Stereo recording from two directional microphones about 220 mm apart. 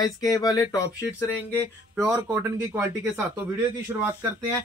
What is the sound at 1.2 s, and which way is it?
Speech, 10° right (ahead or behind).